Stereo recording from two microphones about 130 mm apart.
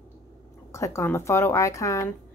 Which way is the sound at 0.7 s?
20° left (ahead or behind).